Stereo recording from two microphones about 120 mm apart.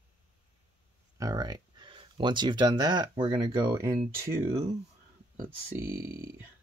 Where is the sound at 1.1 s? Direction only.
30° right (ahead or behind).